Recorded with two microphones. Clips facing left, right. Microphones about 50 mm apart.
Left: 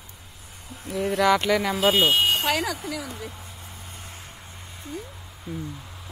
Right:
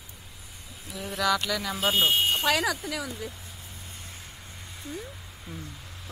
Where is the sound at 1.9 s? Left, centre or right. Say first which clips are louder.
Left 2 dB; left.